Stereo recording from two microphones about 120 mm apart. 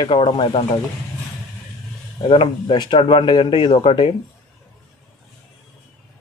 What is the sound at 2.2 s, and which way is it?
Speech, 45° left (ahead or behind).